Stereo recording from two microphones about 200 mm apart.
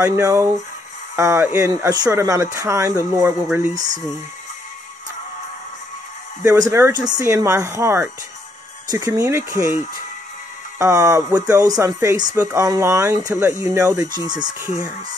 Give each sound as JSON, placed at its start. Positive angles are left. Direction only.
{"t": 0.0, "sound": "speech", "side_deg": -10}
{"t": 3.7, "sound": "speech", "side_deg": -40}
{"t": 6.7, "sound": "speech", "side_deg": -15}
{"t": 10.8, "sound": "speech", "side_deg": -15}